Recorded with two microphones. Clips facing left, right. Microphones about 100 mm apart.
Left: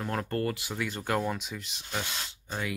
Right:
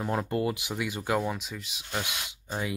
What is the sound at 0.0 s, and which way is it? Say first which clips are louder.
Speech: right 2 dB; 15° right (ahead or behind).